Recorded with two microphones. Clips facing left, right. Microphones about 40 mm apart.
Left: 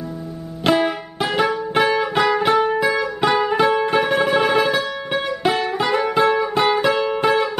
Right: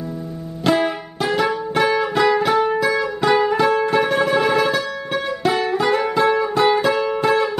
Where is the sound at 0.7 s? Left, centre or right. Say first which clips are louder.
Even; centre.